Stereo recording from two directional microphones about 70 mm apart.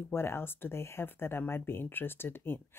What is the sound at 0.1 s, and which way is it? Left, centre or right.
Speech, left.